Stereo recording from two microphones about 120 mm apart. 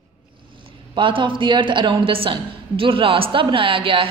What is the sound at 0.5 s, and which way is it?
A woman's voice, 45° right (ahead or behind).